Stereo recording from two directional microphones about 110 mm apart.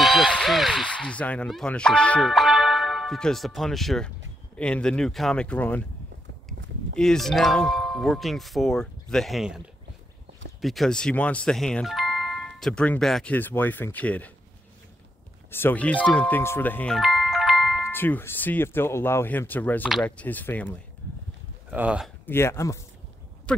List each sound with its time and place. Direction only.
0.0 s a sound: centre (ahead or behind)
0.8 s speech: 10° left (ahead or behind)
2.2 s speech: centre (ahead or behind); by 5.9 s 15° left (ahead or behind)
7.0 s speech: 5° left (ahead or behind)
10.6 s speech: centre (ahead or behind)
15.5 s speech: 15° left (ahead or behind)
16.8 s music: centre (ahead or behind)
17.9 s speech: 20° left (ahead or behind)
21.6 s speech: 10° right (ahead or behind)
22.2 s speech: 20° left (ahead or behind)